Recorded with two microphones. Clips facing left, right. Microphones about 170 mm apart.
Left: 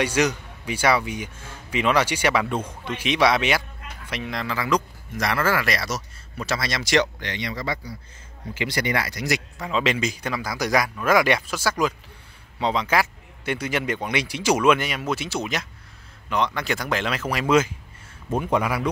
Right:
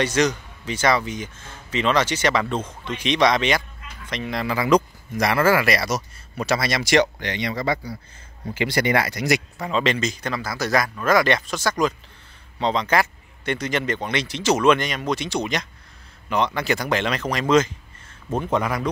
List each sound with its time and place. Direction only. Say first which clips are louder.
0.0 s speech: right 1 dB; 10° left (ahead or behind)
4.5 s speech: right 6 dB; 20° right (ahead or behind)
7.0 s speech: right 1 dB; 55° right (ahead or behind)
9.6 s speech: right 1 dB; centre (ahead or behind)